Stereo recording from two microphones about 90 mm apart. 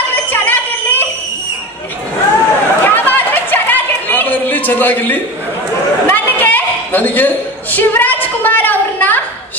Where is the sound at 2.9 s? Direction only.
20° left (ahead or behind).